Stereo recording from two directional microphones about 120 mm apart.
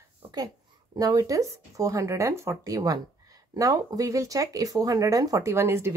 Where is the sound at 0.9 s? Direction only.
30° right (ahead or behind).